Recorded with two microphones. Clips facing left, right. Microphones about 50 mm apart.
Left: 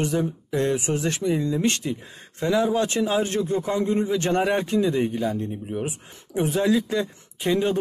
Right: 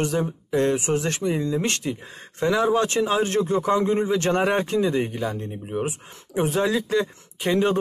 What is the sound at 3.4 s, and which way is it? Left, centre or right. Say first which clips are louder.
Speech: right 2 dB; right.